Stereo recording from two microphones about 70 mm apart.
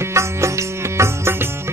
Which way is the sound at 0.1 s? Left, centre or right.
Right.